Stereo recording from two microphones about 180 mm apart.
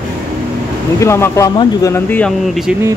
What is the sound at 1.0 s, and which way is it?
Speech, 15° left (ahead or behind).